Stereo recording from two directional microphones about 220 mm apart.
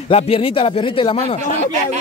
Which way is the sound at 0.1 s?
25° left (ahead or behind).